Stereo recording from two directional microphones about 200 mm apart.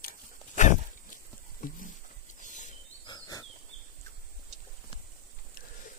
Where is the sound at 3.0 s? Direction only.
20° left (ahead or behind).